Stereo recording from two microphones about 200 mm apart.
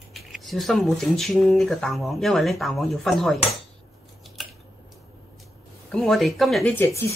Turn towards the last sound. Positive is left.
turn(degrees=10)  # may be behind; listen again after turning